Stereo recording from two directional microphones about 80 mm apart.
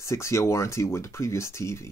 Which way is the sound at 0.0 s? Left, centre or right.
Left.